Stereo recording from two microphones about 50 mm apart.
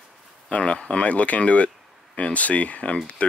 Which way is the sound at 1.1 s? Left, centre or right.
Left.